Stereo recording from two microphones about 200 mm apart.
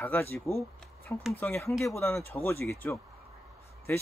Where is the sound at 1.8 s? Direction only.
15° left (ahead or behind).